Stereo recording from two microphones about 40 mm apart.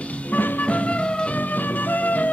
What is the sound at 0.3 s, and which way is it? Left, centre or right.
Music, left.